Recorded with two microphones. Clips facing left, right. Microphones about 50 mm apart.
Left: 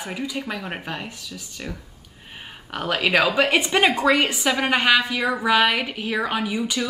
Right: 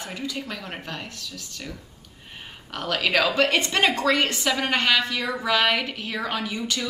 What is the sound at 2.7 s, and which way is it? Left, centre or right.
A woman's voice, centre.